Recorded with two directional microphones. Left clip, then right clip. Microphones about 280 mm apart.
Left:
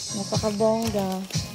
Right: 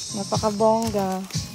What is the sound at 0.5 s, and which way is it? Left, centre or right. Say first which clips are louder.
Speech: right 3 dB; centre.